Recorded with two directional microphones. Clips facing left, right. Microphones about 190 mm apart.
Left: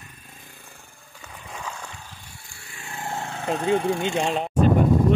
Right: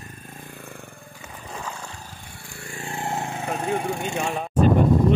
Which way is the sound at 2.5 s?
55° right (ahead or behind).